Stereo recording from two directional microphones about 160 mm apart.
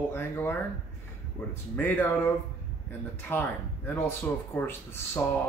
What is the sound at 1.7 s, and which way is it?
Speech, 10° left (ahead or behind).